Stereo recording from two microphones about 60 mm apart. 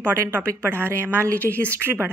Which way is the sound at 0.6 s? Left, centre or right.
Right.